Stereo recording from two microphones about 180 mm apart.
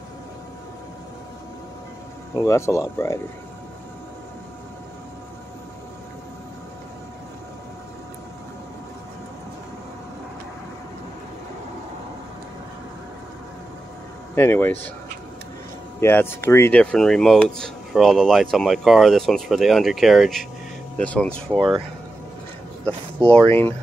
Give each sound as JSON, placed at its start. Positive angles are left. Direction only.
{"t": 2.4, "sound": "speech", "side_deg": 15}
{"t": 14.3, "sound": "speech", "side_deg": 15}
{"t": 16.0, "sound": "speech", "side_deg": 10}
{"t": 22.8, "sound": "speech", "side_deg": 5}